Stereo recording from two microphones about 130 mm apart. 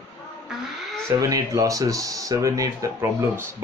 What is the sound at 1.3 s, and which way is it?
Speech, 25° right (ahead or behind).